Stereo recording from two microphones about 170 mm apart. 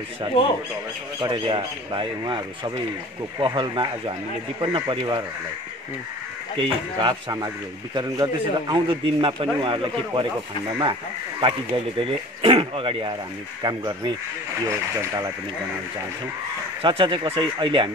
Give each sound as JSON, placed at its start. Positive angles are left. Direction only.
{"t": 1.2, "sound": "a man's voice", "side_deg": -30}
{"t": 6.6, "sound": "a man's voice", "side_deg": -25}
{"t": 16.8, "sound": "a man's voice", "side_deg": -30}